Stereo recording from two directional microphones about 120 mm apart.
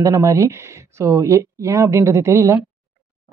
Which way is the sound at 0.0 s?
25° right (ahead or behind).